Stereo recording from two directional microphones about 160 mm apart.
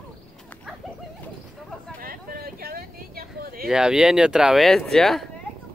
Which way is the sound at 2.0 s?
65° right (ahead or behind).